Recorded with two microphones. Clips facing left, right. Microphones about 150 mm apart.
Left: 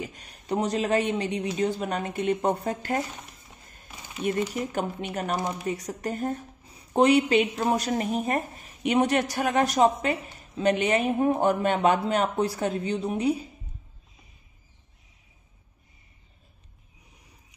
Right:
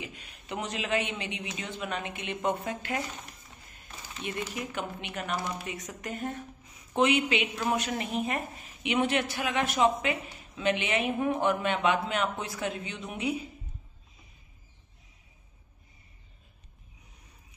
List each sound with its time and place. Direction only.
0.0 s a woman's voice: 40° left (ahead or behind)
4.2 s a woman's voice: 45° left (ahead or behind)